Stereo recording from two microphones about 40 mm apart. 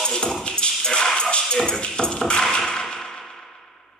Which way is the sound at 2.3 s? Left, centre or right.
Centre.